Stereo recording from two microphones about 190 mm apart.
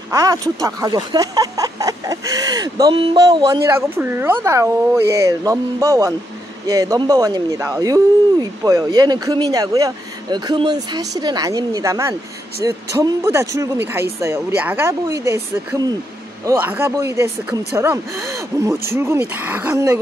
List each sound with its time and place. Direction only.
0.1 s speech: 20° right (ahead or behind)
3.9 s speech: 10° right (ahead or behind)